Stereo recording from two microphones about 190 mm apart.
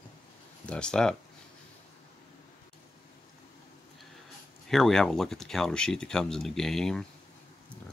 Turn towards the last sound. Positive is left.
turn(degrees=5)  # may be behind; listen again after turning